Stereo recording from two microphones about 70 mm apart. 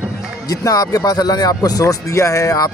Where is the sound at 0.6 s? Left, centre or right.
Left.